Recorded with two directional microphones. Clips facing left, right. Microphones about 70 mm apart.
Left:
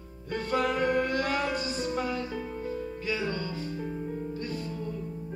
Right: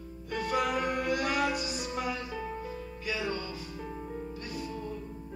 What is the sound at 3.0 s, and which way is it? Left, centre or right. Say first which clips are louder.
Music: left 1 dB; left.